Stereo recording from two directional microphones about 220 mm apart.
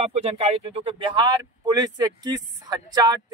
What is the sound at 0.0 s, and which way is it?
Speech, 30° right (ahead or behind).